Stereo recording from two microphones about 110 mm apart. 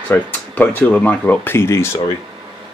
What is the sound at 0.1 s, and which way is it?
Speech, 15° left (ahead or behind).